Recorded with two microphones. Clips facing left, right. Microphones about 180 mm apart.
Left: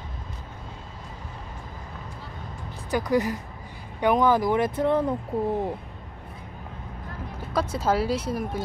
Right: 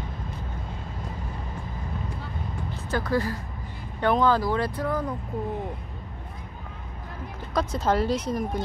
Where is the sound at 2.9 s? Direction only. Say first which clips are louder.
Left 3 dB; 15° left (ahead or behind).